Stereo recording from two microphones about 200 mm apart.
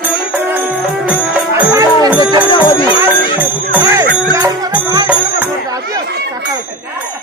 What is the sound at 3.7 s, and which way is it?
Jingle bell, 15° right (ahead or behind).